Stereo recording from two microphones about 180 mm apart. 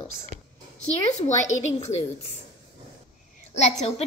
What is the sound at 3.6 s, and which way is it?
Speech, 35° left (ahead or behind).